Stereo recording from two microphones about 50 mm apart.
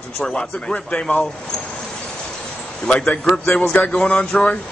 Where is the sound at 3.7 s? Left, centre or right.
Left.